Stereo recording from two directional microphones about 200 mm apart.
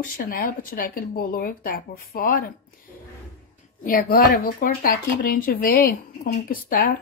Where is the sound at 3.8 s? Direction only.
45° left (ahead or behind).